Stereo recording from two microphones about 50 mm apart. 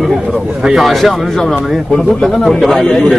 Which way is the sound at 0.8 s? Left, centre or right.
Centre.